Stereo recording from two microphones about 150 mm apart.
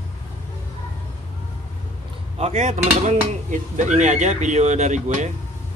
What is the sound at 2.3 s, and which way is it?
Speech, 45° right (ahead or behind).